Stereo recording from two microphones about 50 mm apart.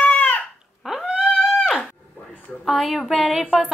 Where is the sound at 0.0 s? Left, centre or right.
Left.